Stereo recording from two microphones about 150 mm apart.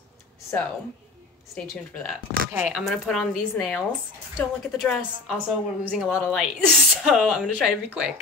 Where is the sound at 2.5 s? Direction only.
10° right (ahead or behind).